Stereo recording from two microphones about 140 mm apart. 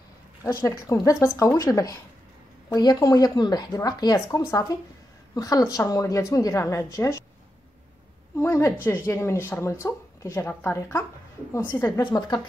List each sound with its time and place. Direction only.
0.4 s a woman's voice: 25° left (ahead or behind)
8.4 s a woman's voice: 20° left (ahead or behind)
12.0 s a woman's voice: 30° left (ahead or behind)